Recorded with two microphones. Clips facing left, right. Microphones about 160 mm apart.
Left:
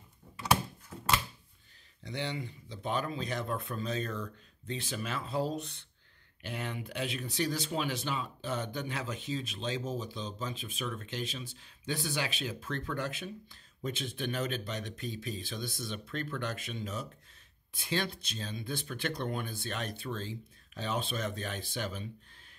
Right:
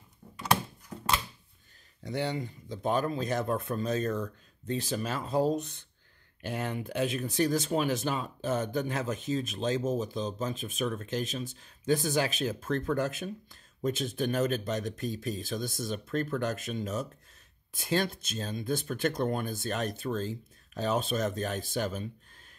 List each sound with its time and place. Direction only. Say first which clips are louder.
2.0 s speech: right 5 dB; 45° right (ahead or behind)